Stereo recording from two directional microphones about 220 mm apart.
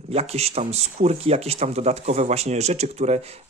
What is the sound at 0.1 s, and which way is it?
Speech, 30° right (ahead or behind).